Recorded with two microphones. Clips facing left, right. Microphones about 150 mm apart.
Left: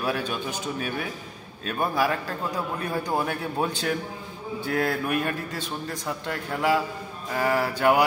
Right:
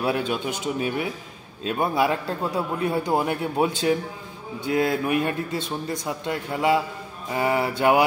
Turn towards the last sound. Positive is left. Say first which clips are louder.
# right 2 dB
turn(degrees=-20)  # may be behind; listen again after turning